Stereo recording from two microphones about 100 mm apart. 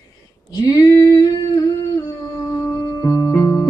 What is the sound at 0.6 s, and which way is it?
Female singing, 40° left (ahead or behind).